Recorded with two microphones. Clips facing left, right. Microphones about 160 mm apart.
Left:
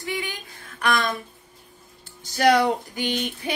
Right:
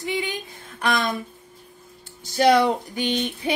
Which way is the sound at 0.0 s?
20° right (ahead or behind).